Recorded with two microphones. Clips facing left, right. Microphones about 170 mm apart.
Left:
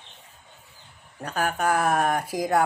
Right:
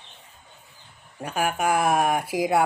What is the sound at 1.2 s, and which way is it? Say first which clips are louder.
Speech: right 1 dB; 10° right (ahead or behind).